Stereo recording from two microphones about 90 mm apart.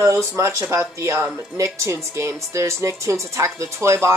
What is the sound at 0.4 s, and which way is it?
Speech, 30° right (ahead or behind).